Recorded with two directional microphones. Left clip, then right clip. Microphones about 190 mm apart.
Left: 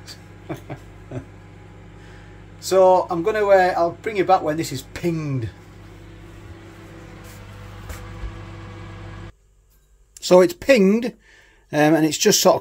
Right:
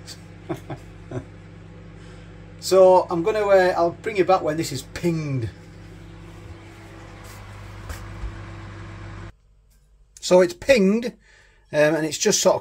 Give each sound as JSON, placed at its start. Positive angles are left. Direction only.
{"t": 0.0, "sound": "vehicle", "side_deg": 0}
{"t": 2.6, "sound": "speech", "side_deg": 5}
{"t": 10.2, "sound": "speech", "side_deg": 25}